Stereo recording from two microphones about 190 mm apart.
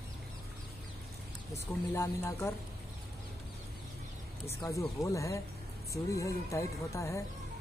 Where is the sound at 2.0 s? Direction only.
15° left (ahead or behind).